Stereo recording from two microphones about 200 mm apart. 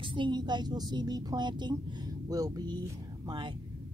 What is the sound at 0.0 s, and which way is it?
Speech, 25° right (ahead or behind).